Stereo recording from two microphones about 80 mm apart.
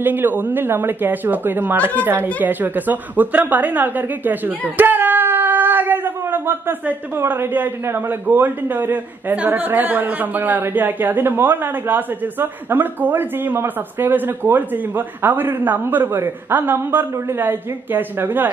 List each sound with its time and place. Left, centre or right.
0.0 s a woman's voice: right